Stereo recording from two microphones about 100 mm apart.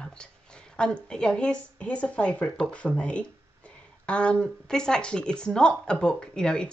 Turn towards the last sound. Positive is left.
turn(degrees=10)  # may be behind; listen again after turning